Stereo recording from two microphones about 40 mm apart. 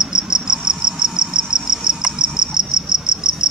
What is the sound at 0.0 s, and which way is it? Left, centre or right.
Cricket, centre.